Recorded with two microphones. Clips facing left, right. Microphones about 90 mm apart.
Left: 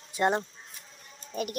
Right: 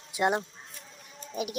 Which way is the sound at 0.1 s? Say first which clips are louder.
Left 1 dB; 10° right (ahead or behind).